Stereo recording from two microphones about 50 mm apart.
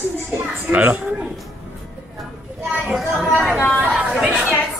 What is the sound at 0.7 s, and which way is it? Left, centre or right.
Speech, right.